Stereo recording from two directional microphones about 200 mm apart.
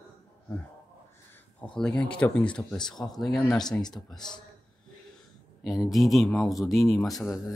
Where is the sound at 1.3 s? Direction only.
5° left (ahead or behind).